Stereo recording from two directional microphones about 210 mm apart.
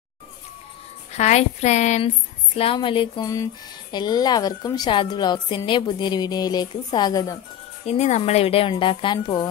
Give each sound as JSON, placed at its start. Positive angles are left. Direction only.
{"t": 1.1, "sound": "a woman's voice", "side_deg": 35}
{"t": 7.8, "sound": "a woman's voice", "side_deg": 30}